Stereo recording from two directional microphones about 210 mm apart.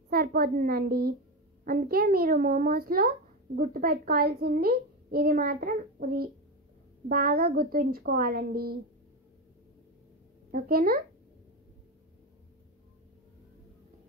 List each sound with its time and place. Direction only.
0.1 s a child's voice: 45° right (ahead or behind)
10.5 s a child's voice: 45° right (ahead or behind)